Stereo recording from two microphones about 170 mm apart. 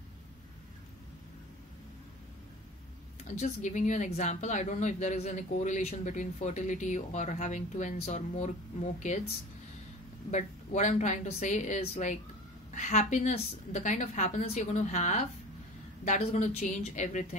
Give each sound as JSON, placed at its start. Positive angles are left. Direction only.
{"t": 3.3, "sound": "speech", "side_deg": 45}
{"t": 10.3, "sound": "speech", "side_deg": 45}